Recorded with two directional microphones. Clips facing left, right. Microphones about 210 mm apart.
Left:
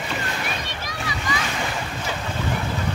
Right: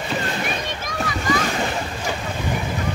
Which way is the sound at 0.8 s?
50° right (ahead or behind).